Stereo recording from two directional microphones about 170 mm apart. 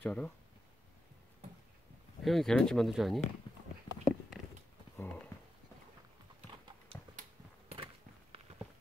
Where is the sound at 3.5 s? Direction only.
30° left (ahead or behind).